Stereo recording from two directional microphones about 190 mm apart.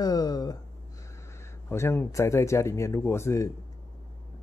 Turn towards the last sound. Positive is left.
turn(degrees=15)  # may be behind; listen again after turning